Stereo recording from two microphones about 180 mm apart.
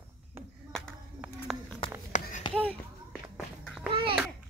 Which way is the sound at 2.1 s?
45° left (ahead or behind).